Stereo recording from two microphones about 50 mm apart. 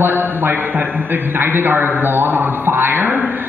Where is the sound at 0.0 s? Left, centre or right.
Right.